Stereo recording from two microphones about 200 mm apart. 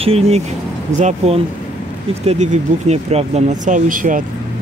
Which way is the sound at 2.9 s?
30° right (ahead or behind).